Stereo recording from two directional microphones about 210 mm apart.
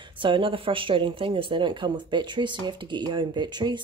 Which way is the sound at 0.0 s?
25° right (ahead or behind).